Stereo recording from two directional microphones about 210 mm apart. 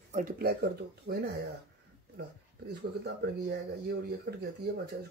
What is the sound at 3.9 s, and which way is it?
Speech, 50° right (ahead or behind).